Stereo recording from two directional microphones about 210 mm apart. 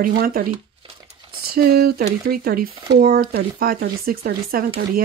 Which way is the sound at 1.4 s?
45° right (ahead or behind).